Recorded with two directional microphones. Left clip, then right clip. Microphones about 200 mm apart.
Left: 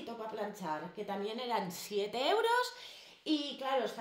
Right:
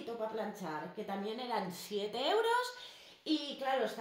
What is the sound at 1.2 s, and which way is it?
A woman's voice, 35° left (ahead or behind).